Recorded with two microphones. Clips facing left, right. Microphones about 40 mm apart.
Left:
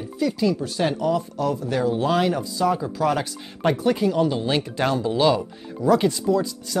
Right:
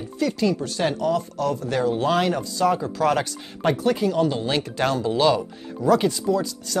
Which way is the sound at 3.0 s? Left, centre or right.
Centre.